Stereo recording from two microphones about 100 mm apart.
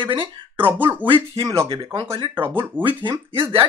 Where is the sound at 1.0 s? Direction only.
55° right (ahead or behind).